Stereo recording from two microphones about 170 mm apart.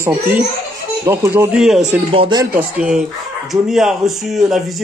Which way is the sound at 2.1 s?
30° right (ahead or behind).